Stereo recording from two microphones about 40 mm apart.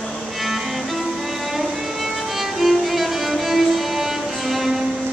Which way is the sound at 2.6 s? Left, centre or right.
Centre.